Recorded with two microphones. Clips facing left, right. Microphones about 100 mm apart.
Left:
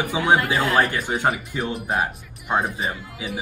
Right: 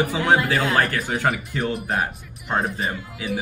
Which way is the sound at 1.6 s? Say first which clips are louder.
Even; centre (ahead or behind).